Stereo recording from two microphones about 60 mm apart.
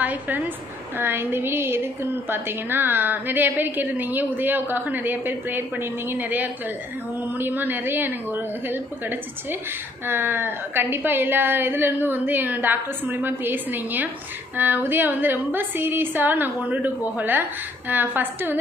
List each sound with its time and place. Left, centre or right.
0.0 s a woman's voice: right
0.9 s speech: right